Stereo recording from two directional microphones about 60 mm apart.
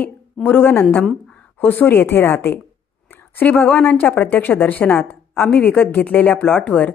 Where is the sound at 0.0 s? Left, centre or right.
Left.